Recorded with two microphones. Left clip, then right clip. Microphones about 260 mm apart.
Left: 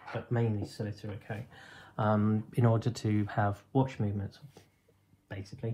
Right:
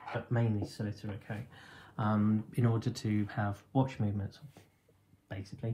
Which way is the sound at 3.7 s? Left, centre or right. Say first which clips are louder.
Left 2 dB; centre.